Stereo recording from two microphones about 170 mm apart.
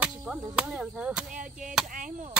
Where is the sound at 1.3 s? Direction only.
50° right (ahead or behind).